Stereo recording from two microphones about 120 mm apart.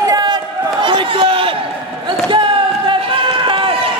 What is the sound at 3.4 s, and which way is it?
Run, 45° right (ahead or behind).